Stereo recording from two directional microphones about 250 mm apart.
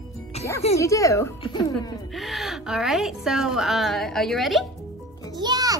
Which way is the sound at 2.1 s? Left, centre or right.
Centre.